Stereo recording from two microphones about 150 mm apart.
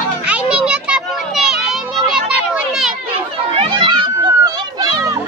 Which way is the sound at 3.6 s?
35° right (ahead or behind).